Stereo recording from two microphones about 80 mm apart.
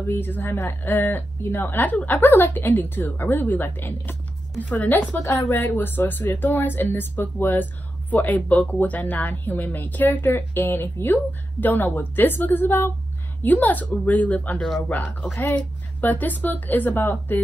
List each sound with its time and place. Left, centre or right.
0.0 s speech: left
5.2 s speech: left
5.5 s speech: left